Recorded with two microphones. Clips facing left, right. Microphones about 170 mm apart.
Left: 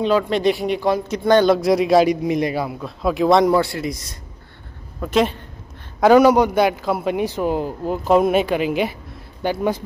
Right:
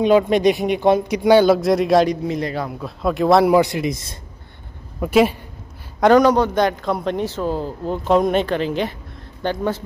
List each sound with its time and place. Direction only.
0.0 s speech: 15° right (ahead or behind)
1.1 s speech: 10° right (ahead or behind)
2.2 s speech: 15° left (ahead or behind); by 3.5 s centre (ahead or behind)
3.5 s speech: 20° right (ahead or behind)
5.0 s a woman's voice: 10° right (ahead or behind)
5.9 s a man's voice: 5° left (ahead or behind)